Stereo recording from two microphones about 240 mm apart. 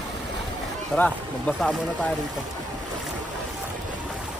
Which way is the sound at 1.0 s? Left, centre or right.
Centre.